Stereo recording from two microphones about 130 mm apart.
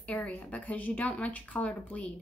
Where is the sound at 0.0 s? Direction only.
10° left (ahead or behind).